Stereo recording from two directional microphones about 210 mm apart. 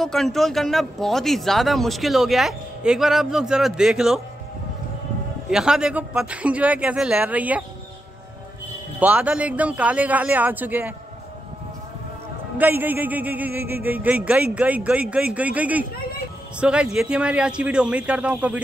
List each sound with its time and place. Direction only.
0.0 s speech: centre (ahead or behind)
5.5 s speech: 5° right (ahead or behind)
9.0 s a man's voice: 5° right (ahead or behind)
12.5 s a man's voice: 10° right (ahead or behind)